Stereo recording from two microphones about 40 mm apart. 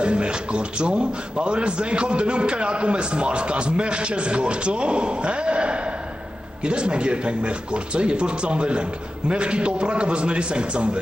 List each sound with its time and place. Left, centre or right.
0.0 s a man's voice: right